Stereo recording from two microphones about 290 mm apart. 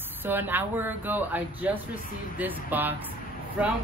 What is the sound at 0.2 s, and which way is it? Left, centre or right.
Speech, centre.